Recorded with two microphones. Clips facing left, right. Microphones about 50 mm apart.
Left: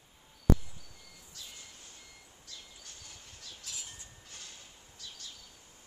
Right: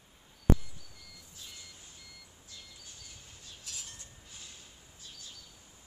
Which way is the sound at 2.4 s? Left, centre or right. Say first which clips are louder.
Left 2 dB; left.